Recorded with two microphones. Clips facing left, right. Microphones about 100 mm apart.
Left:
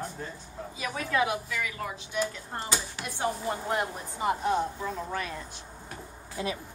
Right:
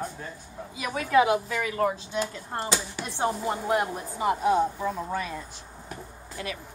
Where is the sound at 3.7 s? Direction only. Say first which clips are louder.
Right 4 dB; 5° right (ahead or behind).